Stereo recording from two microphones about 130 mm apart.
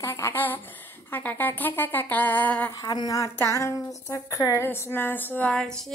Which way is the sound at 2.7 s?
30° left (ahead or behind).